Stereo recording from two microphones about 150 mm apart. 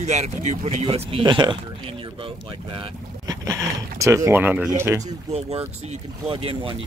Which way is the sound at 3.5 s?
20° right (ahead or behind).